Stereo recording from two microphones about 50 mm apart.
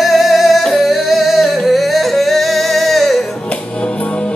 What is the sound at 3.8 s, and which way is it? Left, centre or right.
Music, left.